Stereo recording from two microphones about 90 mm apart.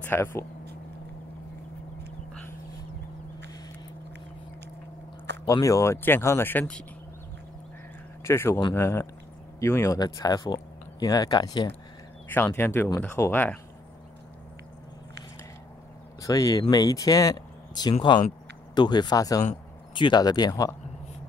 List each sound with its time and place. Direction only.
0.0 s speech: 25° left (ahead or behind)
5.5 s speech: 40° left (ahead or behind)
6.0 s speech: 25° left (ahead or behind)
8.2 s speech: 30° left (ahead or behind)
9.9 s speech: 50° left (ahead or behind)
12.5 s speech: 25° left (ahead or behind)
16.2 s speech: 40° left (ahead or behind)
19.9 s speech: 60° left (ahead or behind)